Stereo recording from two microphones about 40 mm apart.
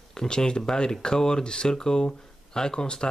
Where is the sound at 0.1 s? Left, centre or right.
Centre.